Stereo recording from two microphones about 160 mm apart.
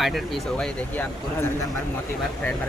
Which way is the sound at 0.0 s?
Centre (ahead or behind).